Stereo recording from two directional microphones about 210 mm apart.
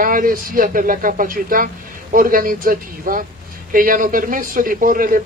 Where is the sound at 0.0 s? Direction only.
40° right (ahead or behind).